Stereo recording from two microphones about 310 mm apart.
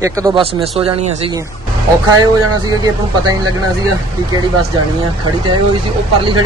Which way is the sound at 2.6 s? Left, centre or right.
Centre.